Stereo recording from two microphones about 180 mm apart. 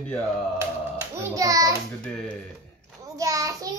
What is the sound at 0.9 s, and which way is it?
Speech, 20° right (ahead or behind).